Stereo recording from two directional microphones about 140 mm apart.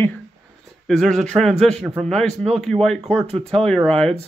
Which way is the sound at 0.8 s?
5° left (ahead or behind).